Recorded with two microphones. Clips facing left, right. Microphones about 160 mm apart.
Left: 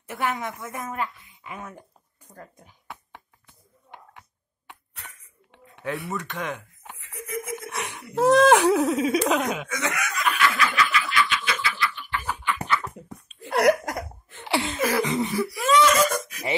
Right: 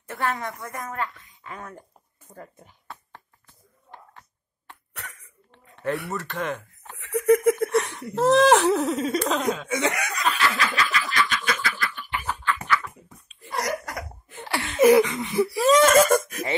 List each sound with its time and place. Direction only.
0.1 s a woman's voice: 20° left (ahead or behind); by 2.7 s 5° right (ahead or behind)
4.9 s cough: 70° right (ahead or behind)
6.0 s speech: centre (ahead or behind)
7.0 s a sound: 70° right (ahead or behind)
7.9 s speech: 5° left (ahead or behind)
9.7 s snicker: 30° right (ahead or behind); by 12.1 s 45° right (ahead or behind)
12.3 s a sound: 10° left (ahead or behind)
13.4 s laughter: 65° left (ahead or behind)
14.4 s laughter: 20° left (ahead or behind)
14.8 s a sound: 20° right (ahead or behind)
15.0 s wheeze: 30° left (ahead or behind)
15.3 s wheeze: 30° right (ahead or behind)
15.7 s laughter: 50° right (ahead or behind)